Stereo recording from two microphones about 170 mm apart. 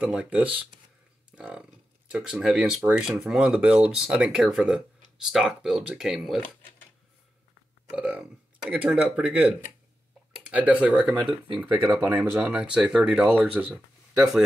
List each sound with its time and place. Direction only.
0.0 s speech: 5° right (ahead or behind)
7.9 s speech: 5° right (ahead or behind)
11.2 s speech: 30° right (ahead or behind)
11.7 s speech: 15° right (ahead or behind)